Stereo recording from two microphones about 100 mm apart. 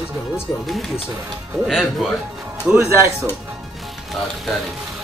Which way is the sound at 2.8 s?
30° right (ahead or behind).